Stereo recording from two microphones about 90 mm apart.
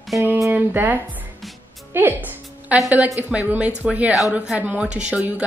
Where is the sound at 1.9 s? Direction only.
20° right (ahead or behind).